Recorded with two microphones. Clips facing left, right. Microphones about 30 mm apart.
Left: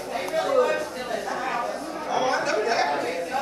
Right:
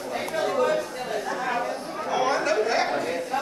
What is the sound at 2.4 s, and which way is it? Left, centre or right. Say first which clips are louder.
Chatter: right 1 dB; centre.